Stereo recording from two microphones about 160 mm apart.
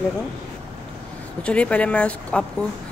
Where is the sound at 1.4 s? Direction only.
5° left (ahead or behind).